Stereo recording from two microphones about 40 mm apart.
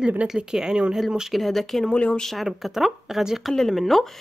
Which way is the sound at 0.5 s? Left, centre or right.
Centre.